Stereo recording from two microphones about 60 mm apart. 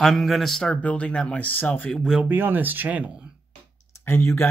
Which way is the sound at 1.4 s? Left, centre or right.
Left.